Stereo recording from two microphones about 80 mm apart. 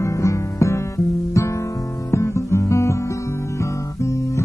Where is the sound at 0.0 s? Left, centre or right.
Left.